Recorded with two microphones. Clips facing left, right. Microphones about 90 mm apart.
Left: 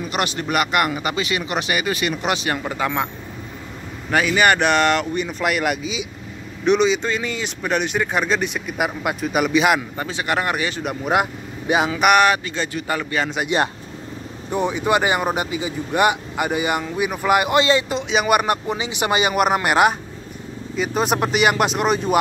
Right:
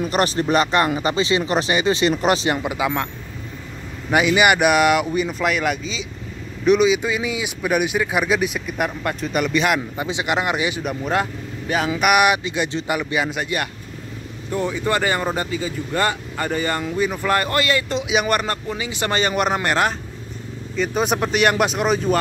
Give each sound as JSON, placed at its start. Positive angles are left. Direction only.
{"t": 0.1, "sound": "speech", "side_deg": -35}
{"t": 2.5, "sound": "speech", "side_deg": -10}
{"t": 4.1, "sound": "speech", "side_deg": -15}
{"t": 6.6, "sound": "speech", "side_deg": 0}
{"t": 9.9, "sound": "speech", "side_deg": -15}
{"t": 11.1, "sound": "speech", "side_deg": 15}
{"t": 12.0, "sound": "speech", "side_deg": -10}
{"t": 13.5, "sound": "speech", "side_deg": 25}
{"t": 18.0, "sound": "speech", "side_deg": 0}
{"t": 18.3, "sound": "speech", "side_deg": 15}